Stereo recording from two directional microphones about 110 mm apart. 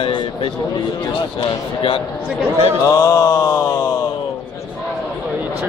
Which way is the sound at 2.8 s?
30° left (ahead or behind).